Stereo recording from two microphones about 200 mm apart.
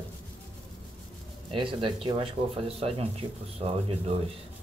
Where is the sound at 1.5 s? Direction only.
25° right (ahead or behind).